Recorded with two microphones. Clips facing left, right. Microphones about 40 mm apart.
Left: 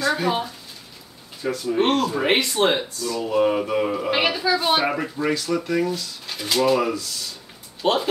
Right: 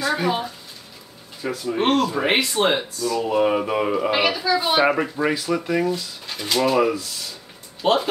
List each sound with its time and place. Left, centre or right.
0.0 s a sound: centre
1.4 s speech: centre
1.8 s speech: centre
3.3 s speech: centre
4.1 s speech: centre
4.7 s speech: centre
7.8 s speech: centre